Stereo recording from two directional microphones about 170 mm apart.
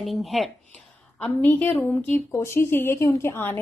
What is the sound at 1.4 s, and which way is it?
A woman's voice, 10° left (ahead or behind).